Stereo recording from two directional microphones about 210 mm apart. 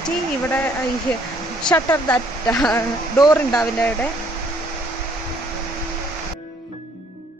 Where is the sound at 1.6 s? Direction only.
10° left (ahead or behind).